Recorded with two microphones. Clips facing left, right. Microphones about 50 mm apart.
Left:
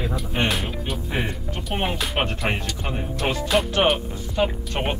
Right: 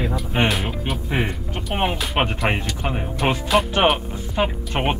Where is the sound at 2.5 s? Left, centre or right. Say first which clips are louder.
Right 3 dB; centre.